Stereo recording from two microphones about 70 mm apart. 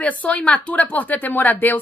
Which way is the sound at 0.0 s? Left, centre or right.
Left.